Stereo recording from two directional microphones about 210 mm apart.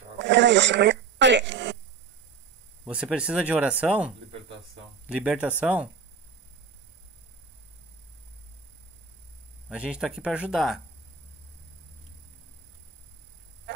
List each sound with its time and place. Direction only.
0.2 s radio: 55° right (ahead or behind)
2.8 s a sound: 5° right (ahead or behind)
3.1 s speech: 5° right (ahead or behind)
9.7 s speech: 5° right (ahead or behind)
13.7 s honk: 55° right (ahead or behind)